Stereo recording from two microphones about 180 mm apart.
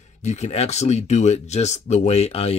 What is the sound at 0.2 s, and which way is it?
Speech, 40° left (ahead or behind).